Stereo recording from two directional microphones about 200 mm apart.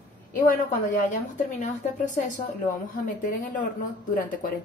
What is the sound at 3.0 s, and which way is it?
Speech, 40° left (ahead or behind).